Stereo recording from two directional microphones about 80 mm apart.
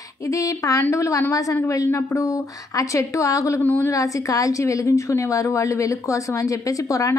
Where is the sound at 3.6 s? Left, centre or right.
Left.